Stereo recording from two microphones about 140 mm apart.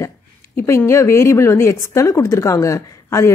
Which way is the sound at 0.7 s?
20° left (ahead or behind).